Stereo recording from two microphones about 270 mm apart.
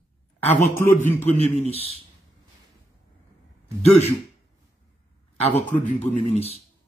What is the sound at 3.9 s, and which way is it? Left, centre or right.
Speech, left.